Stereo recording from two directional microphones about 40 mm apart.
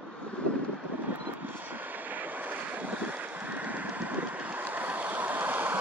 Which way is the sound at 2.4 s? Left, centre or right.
Right.